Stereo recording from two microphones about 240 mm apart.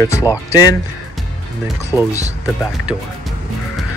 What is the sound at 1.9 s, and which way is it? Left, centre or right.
Speech, centre.